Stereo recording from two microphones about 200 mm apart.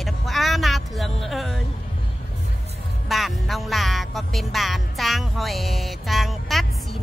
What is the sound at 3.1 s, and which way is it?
Music, centre (ahead or behind).